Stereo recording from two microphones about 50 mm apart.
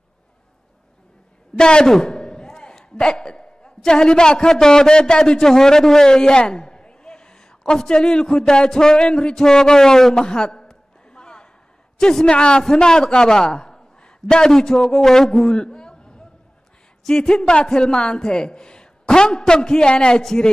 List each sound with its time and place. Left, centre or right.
1.6 s a man's voice: centre